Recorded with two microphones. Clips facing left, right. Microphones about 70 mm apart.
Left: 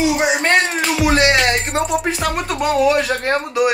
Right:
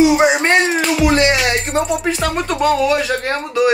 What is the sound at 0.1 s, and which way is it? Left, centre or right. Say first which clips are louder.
Speech: right 3 dB; centre.